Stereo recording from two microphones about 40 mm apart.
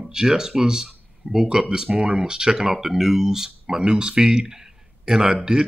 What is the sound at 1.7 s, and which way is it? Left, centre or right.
Speech, right.